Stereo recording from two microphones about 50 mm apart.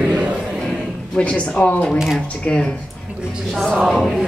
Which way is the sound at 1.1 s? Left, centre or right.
Left.